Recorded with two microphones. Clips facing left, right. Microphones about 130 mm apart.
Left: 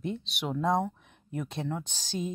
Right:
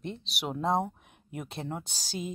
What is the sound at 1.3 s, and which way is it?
Speech, 10° right (ahead or behind).